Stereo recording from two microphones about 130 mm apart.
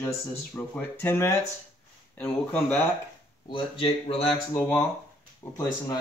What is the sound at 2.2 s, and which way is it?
Speech, 5° left (ahead or behind).